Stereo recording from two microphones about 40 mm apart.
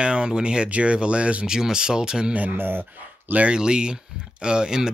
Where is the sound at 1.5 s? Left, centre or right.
Centre.